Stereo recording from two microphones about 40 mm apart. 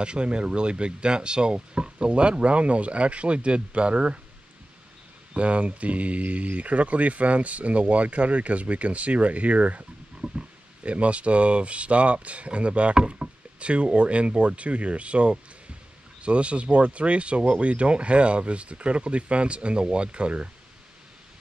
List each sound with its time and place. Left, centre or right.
0.0 s speech: right
5.3 s speech: right